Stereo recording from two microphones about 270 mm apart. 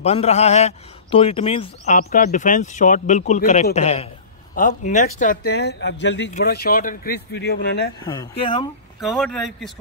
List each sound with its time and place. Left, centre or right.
0.0 s a man's voice: left
8.0 s speech: centre
9.0 s a man's voice: centre